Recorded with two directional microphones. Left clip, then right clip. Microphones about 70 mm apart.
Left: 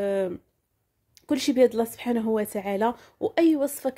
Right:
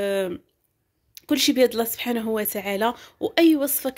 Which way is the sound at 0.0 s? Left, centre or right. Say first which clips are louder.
Right 2 dB; left.